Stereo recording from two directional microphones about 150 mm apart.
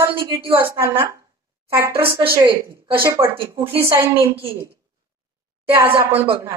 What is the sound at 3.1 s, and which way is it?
Speech, 15° right (ahead or behind).